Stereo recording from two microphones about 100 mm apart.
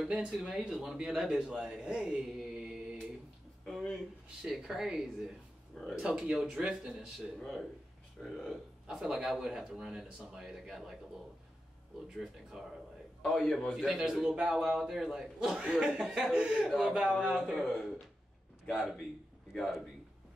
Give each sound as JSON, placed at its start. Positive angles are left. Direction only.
{"t": 0.0, "sound": "a man's voice", "side_deg": -5}
{"t": 12.5, "sound": "speech", "side_deg": -5}
{"t": 13.2, "sound": "a man's voice", "side_deg": 5}
{"t": 19.5, "sound": "a man's voice", "side_deg": 0}